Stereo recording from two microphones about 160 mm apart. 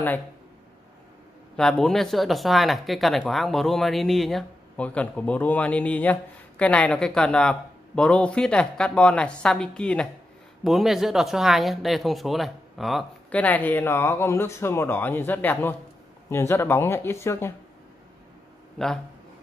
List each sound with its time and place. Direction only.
1.6 s speech: 5° left (ahead or behind)
18.8 s speech: 5° left (ahead or behind)